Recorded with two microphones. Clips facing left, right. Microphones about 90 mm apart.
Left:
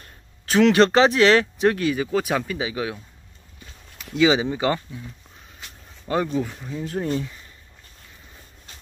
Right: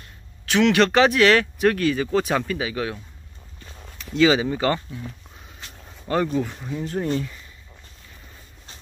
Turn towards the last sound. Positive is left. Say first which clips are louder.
# right 1 dB
turn(degrees=0)  # may be behind; listen again after turning